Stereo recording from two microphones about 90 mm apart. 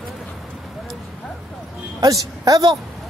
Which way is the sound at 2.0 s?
40° right (ahead or behind).